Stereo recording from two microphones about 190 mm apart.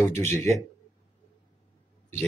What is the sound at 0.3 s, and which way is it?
Speech, 15° left (ahead or behind).